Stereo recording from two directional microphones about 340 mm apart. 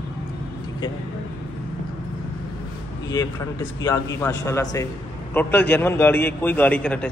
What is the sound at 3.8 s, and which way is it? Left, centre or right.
A man's voice, centre.